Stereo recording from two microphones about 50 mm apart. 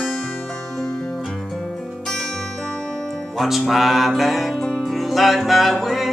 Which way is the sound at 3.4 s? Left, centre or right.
Centre.